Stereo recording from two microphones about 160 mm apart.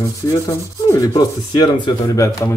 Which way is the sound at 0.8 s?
20° left (ahead or behind).